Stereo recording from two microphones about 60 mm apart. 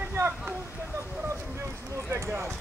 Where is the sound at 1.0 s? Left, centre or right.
Right.